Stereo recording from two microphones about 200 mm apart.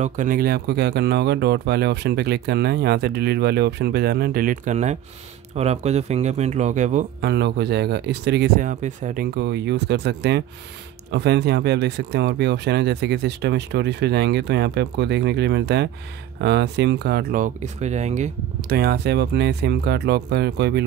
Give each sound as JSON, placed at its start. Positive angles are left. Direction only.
{"t": 0.0, "sound": "speech", "side_deg": -40}
{"t": 7.2, "sound": "speech", "side_deg": -55}
{"t": 18.7, "sound": "speech", "side_deg": -50}